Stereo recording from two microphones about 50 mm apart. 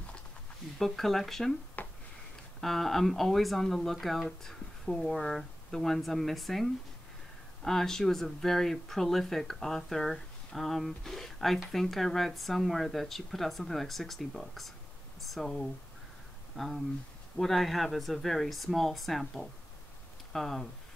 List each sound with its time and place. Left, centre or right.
0.7 s speech: centre
1.8 s a sound: left
2.6 s speech: centre